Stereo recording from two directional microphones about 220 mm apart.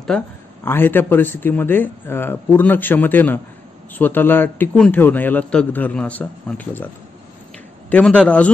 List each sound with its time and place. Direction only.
0.1 s a man's voice: 5° left (ahead or behind)
7.9 s a man's voice: 5° left (ahead or behind)